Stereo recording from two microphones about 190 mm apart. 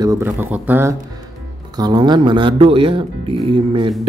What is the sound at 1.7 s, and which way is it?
Speech, 20° right (ahead or behind).